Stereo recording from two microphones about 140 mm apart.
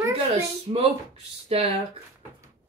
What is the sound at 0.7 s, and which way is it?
Speech, 35° right (ahead or behind).